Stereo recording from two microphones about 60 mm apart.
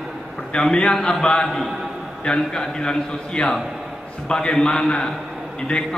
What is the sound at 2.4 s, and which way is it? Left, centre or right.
A man's voice, centre.